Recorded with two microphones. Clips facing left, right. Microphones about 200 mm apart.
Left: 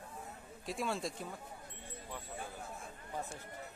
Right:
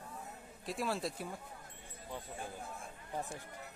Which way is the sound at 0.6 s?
Centre (ahead or behind).